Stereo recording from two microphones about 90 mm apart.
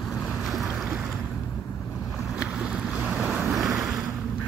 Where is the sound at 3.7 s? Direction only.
Centre (ahead or behind).